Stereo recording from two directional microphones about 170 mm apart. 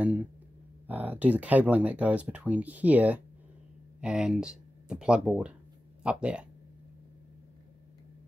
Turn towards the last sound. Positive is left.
turn(degrees=-5)  # may be behind; listen again after turning